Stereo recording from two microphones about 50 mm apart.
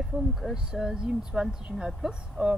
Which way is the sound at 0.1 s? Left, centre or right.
Centre.